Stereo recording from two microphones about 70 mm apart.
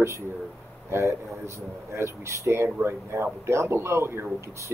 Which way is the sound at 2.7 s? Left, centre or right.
Right.